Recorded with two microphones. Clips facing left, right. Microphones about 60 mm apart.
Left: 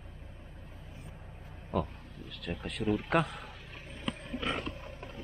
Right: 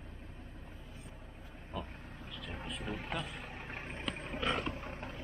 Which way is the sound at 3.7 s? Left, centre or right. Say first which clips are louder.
Left 2 dB; right.